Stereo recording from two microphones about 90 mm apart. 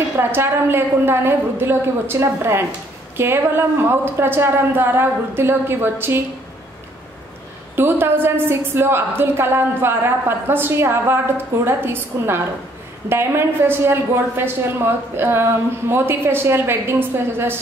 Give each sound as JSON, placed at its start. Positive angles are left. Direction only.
{"t": 0.2, "sound": "a woman's voice", "side_deg": -25}
{"t": 7.7, "sound": "a woman's voice", "side_deg": -25}